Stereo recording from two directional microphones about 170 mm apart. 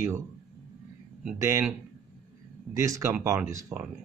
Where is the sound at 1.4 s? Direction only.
15° right (ahead or behind).